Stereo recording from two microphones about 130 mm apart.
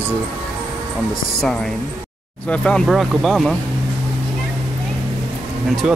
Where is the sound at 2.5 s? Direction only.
5° left (ahead or behind).